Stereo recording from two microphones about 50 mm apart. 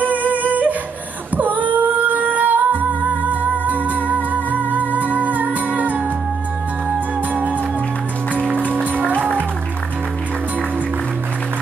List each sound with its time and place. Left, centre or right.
0.1 s humming: right
1.3 s music: right
8.5 s music: left